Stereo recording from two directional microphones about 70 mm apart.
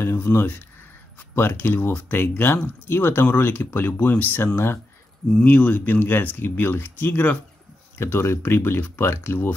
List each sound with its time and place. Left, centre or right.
0.0 s speech: left
5.4 s speech: left